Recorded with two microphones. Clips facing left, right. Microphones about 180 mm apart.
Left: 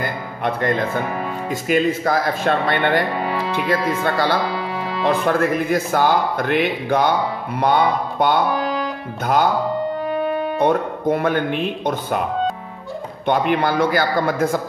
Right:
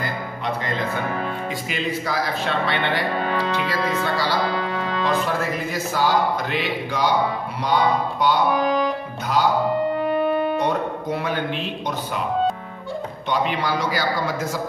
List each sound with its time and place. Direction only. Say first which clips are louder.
0.0 s music: left 4 dB; 55° left (ahead or behind)
1.5 s speech: left 8 dB; 50° left (ahead or behind)
3.2 s speech: left 1 dB; 10° left (ahead or behind)
4.0 s speech: left 4 dB; 55° left (ahead or behind)
4.6 s music: even; 10° left (ahead or behind)
5.0 s speech: left 7 dB; 55° left (ahead or behind)
10.6 s speech: left 5 dB; 50° left (ahead or behind)
13.3 s speech: left 5 dB; 55° left (ahead or behind)